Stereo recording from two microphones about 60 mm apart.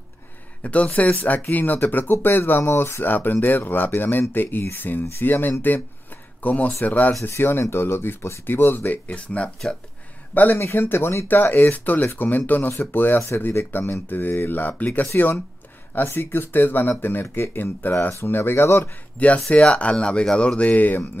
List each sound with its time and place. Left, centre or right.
0.6 s speech: left
3.0 s speech: left
7.2 s speech: left
10.6 s speech: left
19.1 s speech: left